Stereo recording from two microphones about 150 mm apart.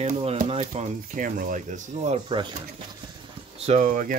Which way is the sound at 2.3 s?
35° right (ahead or behind).